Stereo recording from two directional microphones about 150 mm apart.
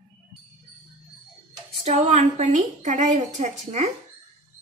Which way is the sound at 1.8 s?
50° right (ahead or behind).